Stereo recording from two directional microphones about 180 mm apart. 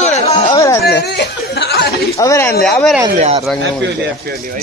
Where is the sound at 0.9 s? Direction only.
70° left (ahead or behind).